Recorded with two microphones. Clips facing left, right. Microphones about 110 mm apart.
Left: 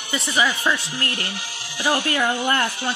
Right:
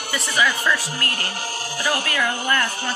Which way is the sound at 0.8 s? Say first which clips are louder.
Even; 40° right (ahead or behind).